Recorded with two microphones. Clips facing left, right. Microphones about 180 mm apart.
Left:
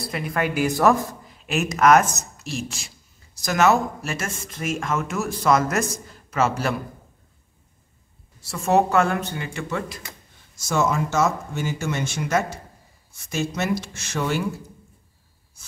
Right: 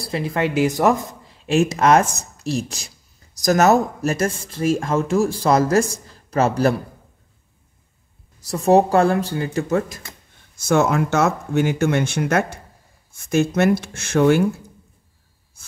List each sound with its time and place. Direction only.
0.0 s a woman's voice: 30° right (ahead or behind)
8.4 s speech: 35° right (ahead or behind)
10.5 s speech: 60° right (ahead or behind)